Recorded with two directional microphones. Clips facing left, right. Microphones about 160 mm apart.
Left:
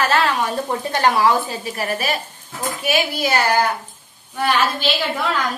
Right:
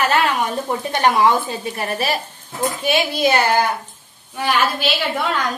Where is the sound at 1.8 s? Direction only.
30° right (ahead or behind).